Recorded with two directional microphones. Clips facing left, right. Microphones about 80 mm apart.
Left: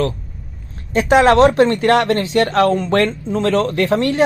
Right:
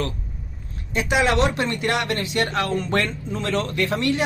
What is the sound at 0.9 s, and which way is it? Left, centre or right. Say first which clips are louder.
Speech: left 9 dB; left.